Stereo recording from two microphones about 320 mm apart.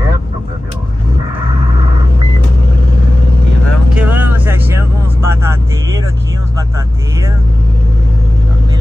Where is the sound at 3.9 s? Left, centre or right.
Centre.